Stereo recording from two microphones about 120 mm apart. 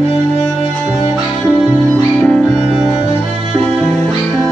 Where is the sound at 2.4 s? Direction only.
5° right (ahead or behind).